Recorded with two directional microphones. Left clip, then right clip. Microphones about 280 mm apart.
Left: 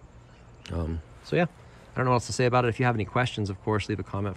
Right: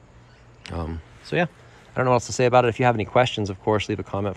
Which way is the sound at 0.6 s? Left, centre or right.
Centre.